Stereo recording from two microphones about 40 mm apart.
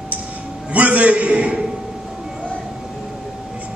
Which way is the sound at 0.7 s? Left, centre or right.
Right.